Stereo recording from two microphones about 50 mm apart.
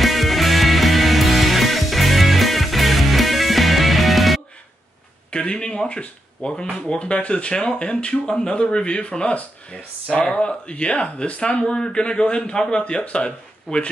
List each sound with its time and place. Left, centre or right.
0.0 s music: centre
5.3 s speech: centre
11.6 s speech: centre